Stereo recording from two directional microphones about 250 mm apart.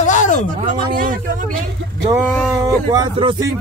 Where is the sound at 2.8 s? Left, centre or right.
Centre.